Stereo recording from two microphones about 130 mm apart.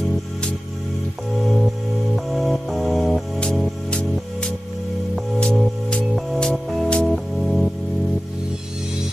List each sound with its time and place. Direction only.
1.4 s music: centre (ahead or behind)